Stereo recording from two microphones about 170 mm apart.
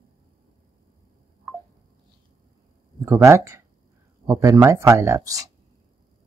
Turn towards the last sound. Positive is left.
turn(degrees=-20)  # may be behind; listen again after turning